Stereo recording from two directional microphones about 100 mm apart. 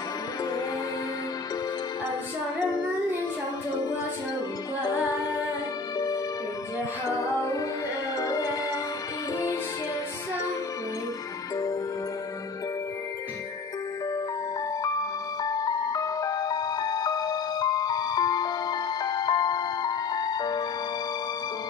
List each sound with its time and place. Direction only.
3.7 s music: 40° left (ahead or behind)
7.1 s music: 35° left (ahead or behind)
14.8 s music: 40° left (ahead or behind)